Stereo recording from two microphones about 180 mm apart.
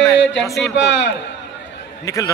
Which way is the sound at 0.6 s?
75° left (ahead or behind).